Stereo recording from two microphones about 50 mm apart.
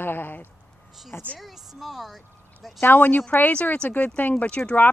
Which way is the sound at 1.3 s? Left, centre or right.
Centre.